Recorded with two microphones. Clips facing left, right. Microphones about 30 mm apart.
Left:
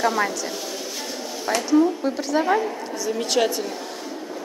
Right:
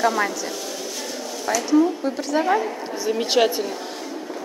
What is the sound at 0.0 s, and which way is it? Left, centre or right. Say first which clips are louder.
Speech: right 1 dB; centre.